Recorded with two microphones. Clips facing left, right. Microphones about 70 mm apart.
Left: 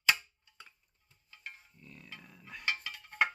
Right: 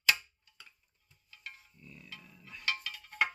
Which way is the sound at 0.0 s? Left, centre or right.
Left.